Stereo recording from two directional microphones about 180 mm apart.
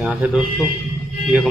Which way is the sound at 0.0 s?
5° right (ahead or behind).